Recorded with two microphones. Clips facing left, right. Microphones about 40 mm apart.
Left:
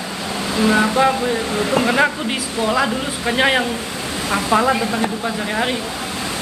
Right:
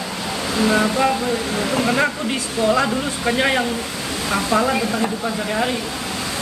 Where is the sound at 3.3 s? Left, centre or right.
Left.